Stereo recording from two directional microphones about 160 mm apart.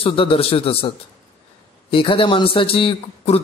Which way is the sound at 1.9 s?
30° left (ahead or behind).